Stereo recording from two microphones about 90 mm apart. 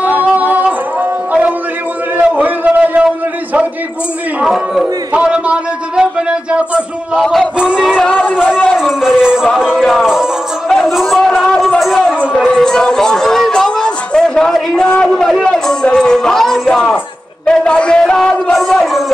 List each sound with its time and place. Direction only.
0.0 s music: 15° right (ahead or behind)
2.3 s a sound: 20° right (ahead or behind)
4.4 s speech: 5° right (ahead or behind)
5.1 s a sound: 10° right (ahead or behind)
7.2 s speech: 5° left (ahead or behind)
7.5 s music: 10° right (ahead or behind)
8.0 s speech: 15° left (ahead or behind)
8.7 s speech: 5° right (ahead or behind)
10.7 s a sound: centre (ahead or behind)
15.3 s a man's voice: 5° left (ahead or behind)